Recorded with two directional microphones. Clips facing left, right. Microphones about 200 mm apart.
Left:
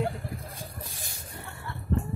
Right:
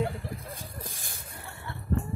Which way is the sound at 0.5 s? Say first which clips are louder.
Right 1 dB; 50° right (ahead or behind).